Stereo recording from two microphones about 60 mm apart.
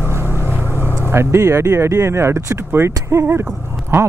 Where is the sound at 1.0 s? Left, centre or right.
Right.